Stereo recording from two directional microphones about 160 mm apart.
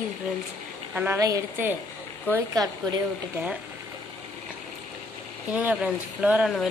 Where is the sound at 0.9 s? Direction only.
15° right (ahead or behind).